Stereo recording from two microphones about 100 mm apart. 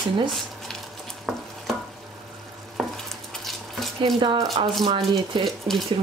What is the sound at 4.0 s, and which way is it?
Speech, 50° right (ahead or behind).